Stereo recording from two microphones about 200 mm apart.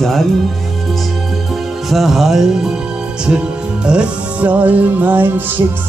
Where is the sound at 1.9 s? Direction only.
Centre (ahead or behind).